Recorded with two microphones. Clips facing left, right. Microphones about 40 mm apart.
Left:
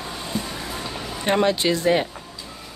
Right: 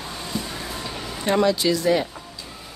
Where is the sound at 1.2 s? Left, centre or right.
Left.